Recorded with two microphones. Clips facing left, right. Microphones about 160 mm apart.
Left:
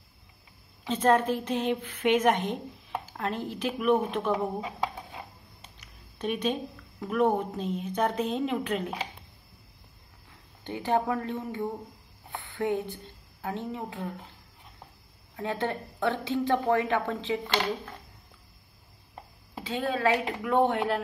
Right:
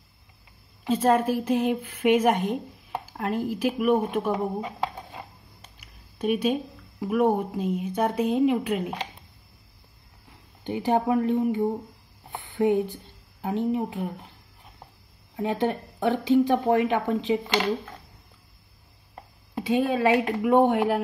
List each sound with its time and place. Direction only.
0.8 s a woman's voice: 10° right (ahead or behind)
5.8 s speech: 10° right (ahead or behind)
10.6 s a woman's voice: 15° right (ahead or behind)
12.3 s a sound: 20° right (ahead or behind)
12.9 s speech: 15° right (ahead or behind)
15.3 s a woman's voice: 15° right (ahead or behind)
19.6 s a woman's voice: 15° right (ahead or behind)